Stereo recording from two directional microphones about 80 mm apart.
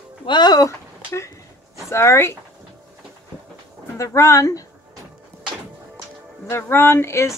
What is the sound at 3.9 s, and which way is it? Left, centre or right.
Speech, left.